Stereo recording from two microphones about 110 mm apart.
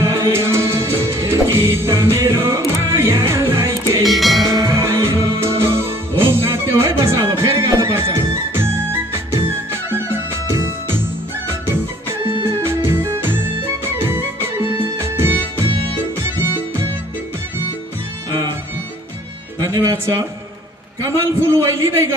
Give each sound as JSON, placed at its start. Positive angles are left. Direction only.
{"t": 0.0, "sound": "music", "side_deg": -25}
{"t": 4.0, "sound": "music", "side_deg": 0}
{"t": 4.6, "sound": "music", "side_deg": -30}
{"t": 19.6, "sound": "music", "side_deg": -35}
{"t": 21.0, "sound": "a sound", "side_deg": -25}